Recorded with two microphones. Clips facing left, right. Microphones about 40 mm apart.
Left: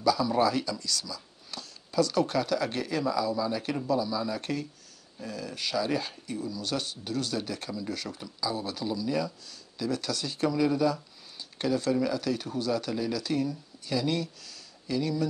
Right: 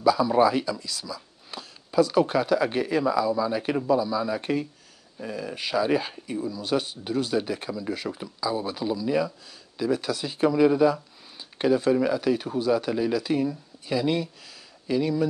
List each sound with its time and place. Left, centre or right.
0.0 s speech: centre